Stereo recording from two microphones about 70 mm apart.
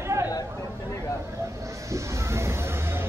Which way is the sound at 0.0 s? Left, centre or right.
Right.